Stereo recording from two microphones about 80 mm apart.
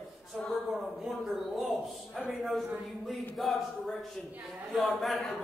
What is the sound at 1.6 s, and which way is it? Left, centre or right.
A man's voice, centre.